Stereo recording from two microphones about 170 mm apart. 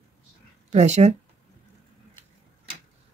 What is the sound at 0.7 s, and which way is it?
Speech, 45° right (ahead or behind).